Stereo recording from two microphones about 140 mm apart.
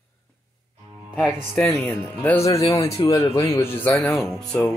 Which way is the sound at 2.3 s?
20° left (ahead or behind).